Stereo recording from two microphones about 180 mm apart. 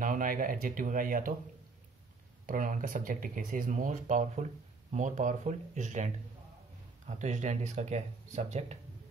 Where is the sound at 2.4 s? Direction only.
50° right (ahead or behind).